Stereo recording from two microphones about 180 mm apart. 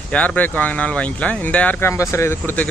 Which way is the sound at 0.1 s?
5° left (ahead or behind).